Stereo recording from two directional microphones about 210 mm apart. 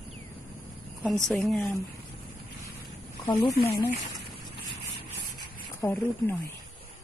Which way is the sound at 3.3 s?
20° left (ahead or behind).